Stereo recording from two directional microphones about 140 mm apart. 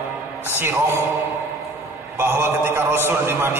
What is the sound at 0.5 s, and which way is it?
Speech, 15° right (ahead or behind).